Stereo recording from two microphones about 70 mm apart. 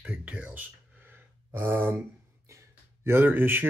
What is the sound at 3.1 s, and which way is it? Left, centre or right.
Speech, right.